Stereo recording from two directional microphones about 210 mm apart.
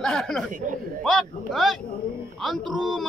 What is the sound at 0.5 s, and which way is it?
Speech, 40° right (ahead or behind).